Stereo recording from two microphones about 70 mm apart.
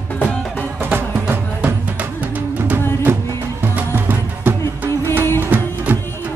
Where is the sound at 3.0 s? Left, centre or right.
Right.